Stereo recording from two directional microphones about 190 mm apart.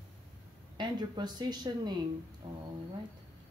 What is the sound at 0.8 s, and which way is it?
Speech, 20° right (ahead or behind).